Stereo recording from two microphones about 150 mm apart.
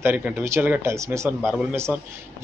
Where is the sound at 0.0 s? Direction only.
10° right (ahead or behind).